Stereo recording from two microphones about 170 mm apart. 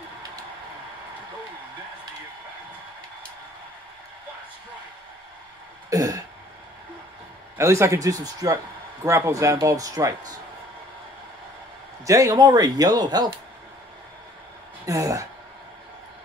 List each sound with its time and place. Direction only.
5.9 s throat clearing: 20° right (ahead or behind)
7.5 s speech: 15° right (ahead or behind)
12.1 s speech: 20° right (ahead or behind)
14.9 s speech: 20° right (ahead or behind)